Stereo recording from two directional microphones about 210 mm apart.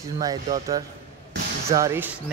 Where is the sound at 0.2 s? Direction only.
15° right (ahead or behind).